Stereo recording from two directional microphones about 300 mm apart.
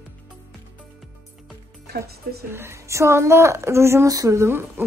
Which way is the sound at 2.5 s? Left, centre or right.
Centre.